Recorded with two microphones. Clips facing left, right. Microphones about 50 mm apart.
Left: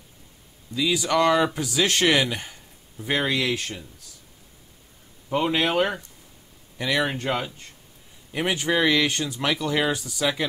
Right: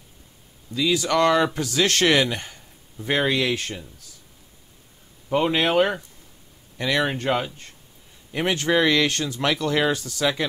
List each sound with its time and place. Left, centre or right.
0.7 s speech: centre
2.0 s a sound: centre
3.1 s speech: centre
5.3 s speech: centre
8.3 s speech: centre